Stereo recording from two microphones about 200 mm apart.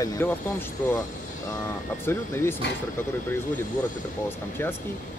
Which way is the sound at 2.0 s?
10° left (ahead or behind).